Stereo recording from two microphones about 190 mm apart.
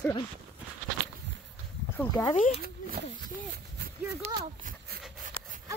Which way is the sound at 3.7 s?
60° right (ahead or behind).